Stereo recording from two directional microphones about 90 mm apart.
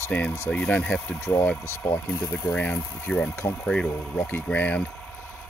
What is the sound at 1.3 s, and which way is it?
Speech, 35° left (ahead or behind).